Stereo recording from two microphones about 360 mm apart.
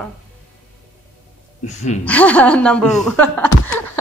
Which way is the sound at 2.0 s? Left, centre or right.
Centre.